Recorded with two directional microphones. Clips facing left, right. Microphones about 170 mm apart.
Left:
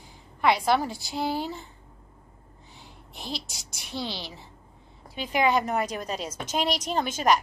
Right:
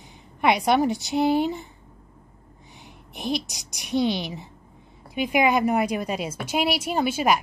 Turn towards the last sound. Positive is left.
turn(degrees=-10)  # may be behind; listen again after turning